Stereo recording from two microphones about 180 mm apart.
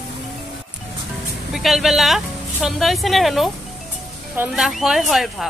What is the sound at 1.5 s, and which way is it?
A woman's voice, centre (ahead or behind).